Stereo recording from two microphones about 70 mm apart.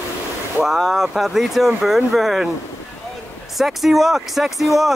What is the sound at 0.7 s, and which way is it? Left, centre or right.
Speech, centre.